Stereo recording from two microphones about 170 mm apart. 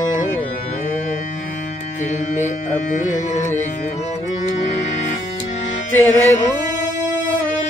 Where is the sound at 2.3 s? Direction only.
45° left (ahead or behind).